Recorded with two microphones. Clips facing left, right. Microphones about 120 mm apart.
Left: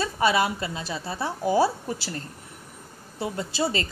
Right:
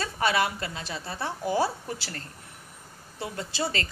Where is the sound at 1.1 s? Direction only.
10° left (ahead or behind).